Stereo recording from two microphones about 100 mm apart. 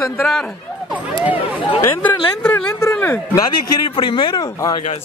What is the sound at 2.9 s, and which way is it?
Speech, 20° left (ahead or behind).